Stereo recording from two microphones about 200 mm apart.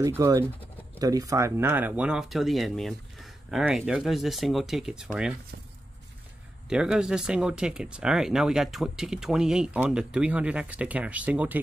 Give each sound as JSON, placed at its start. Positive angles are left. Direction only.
{"t": 0.0, "sound": "speech", "side_deg": -15}
{"t": 6.7, "sound": "speech", "side_deg": -5}